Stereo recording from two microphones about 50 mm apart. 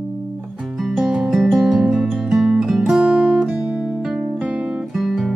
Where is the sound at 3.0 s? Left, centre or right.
Right.